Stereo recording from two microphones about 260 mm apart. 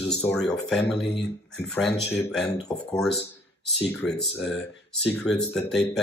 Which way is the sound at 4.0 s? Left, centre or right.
Centre.